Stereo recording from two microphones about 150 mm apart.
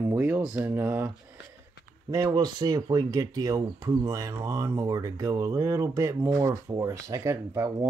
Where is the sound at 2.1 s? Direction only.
20° right (ahead or behind).